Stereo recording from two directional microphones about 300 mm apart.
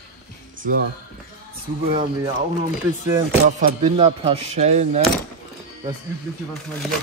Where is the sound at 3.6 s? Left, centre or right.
Right.